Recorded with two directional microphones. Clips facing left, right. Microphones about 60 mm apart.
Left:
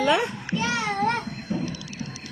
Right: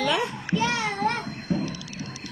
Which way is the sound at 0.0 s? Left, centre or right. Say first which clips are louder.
Left 3 dB; left.